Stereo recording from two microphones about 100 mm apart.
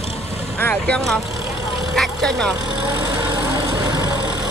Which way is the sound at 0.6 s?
20° left (ahead or behind).